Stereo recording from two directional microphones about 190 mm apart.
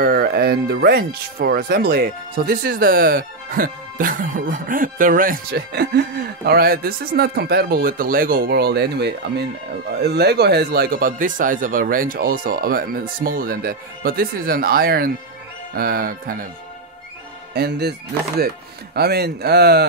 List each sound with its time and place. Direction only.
0.0 s speech: 50° right (ahead or behind)
17.6 s speech: 60° right (ahead or behind)
18.9 s speech: 55° right (ahead or behind)